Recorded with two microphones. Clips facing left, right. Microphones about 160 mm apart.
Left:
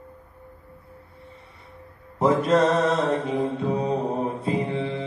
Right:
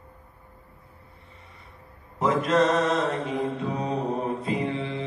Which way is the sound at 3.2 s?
30° left (ahead or behind).